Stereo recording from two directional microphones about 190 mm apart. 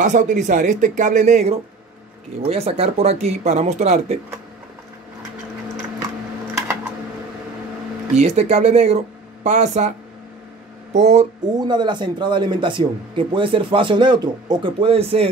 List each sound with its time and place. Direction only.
0.0 s speech: 40° right (ahead or behind)
8.2 s speech: 35° right (ahead or behind)
11.5 s speech: 25° right (ahead or behind)